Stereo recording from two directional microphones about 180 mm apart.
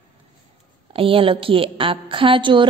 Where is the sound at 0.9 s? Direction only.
30° right (ahead or behind).